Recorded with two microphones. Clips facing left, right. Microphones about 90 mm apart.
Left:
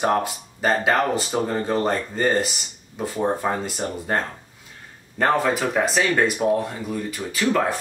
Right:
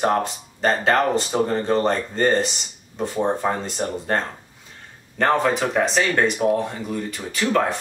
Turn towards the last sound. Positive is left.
turn(degrees=5)  # may be behind; listen again after turning